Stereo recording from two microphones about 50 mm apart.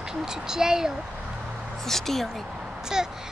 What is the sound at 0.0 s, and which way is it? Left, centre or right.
A child's voice, centre.